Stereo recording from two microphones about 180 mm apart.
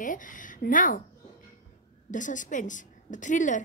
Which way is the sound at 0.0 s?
45° left (ahead or behind).